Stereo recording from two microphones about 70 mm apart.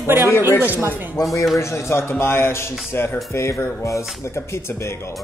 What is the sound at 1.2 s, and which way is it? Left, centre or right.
A man's voice, left.